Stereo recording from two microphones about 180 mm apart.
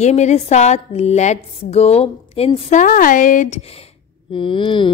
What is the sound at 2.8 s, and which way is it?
Speech, 50° left (ahead or behind).